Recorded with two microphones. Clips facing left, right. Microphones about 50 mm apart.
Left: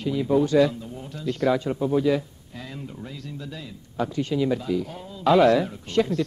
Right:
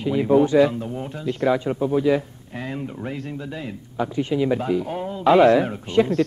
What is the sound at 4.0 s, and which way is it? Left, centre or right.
Speech, centre.